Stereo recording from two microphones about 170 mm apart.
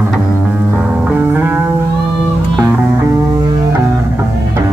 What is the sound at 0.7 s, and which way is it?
Music, 5° right (ahead or behind).